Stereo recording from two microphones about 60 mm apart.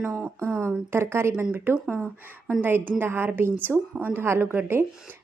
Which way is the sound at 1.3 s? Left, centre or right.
Right.